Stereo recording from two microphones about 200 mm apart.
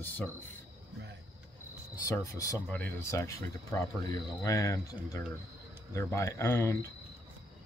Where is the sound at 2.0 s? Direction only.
15° left (ahead or behind).